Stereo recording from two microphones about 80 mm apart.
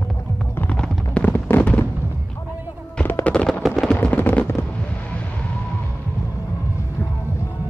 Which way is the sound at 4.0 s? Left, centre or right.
Left.